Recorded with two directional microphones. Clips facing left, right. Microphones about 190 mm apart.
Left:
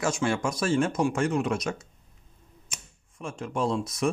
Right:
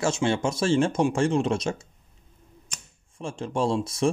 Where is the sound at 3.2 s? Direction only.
30° right (ahead or behind).